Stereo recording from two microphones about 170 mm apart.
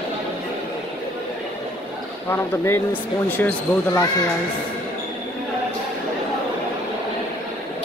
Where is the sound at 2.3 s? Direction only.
10° left (ahead or behind).